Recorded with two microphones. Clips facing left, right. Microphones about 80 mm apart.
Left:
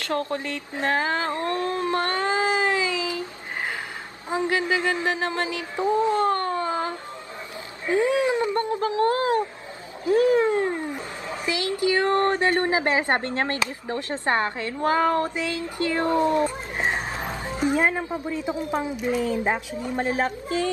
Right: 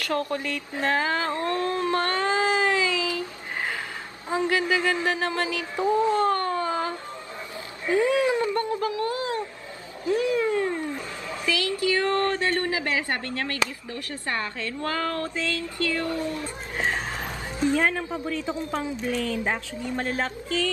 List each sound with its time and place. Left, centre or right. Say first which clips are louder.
0.0 s a sound: even; left
4.3 s music: even; left
7.8 s speech: even; left
10.4 s speech: left 2 dB; left